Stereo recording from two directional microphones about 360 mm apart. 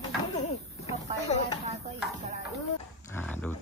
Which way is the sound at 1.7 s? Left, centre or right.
Centre.